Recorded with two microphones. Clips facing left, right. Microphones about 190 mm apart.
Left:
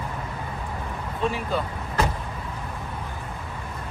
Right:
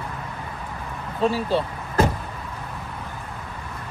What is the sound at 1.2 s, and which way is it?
Speech, 35° right (ahead or behind).